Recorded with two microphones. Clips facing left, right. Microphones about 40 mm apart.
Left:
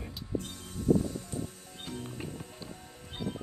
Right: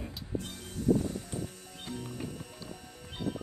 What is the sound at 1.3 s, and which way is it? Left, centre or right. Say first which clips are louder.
Music: even; right.